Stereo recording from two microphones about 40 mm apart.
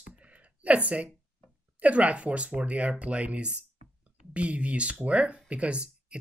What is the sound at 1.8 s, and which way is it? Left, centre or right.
Speech, right.